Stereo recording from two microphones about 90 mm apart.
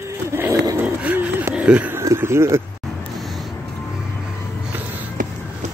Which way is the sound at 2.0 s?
30° right (ahead or behind).